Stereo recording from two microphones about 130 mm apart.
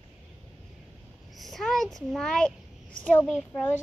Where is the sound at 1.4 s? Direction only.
Centre (ahead or behind).